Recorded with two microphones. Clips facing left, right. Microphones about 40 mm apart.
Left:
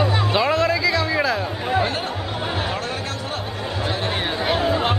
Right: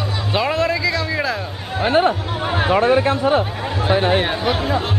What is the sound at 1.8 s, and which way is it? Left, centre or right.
Speech, right.